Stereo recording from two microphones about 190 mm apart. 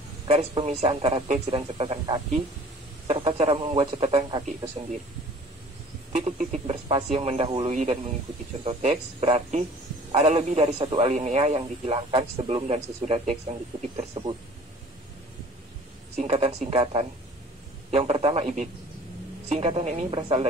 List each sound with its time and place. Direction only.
0.3 s speech: 35° right (ahead or behind)
6.2 s speech: 35° right (ahead or behind)
16.2 s speech: 35° right (ahead or behind)
20.1 s speech: 30° right (ahead or behind)